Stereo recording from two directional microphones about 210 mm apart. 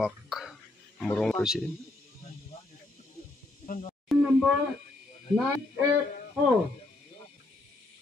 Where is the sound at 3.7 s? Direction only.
30° left (ahead or behind).